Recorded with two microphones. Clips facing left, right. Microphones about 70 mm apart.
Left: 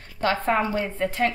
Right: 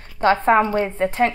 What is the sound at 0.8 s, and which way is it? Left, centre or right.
Speech, right.